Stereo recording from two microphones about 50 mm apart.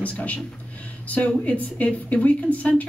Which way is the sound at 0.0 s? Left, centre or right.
Left.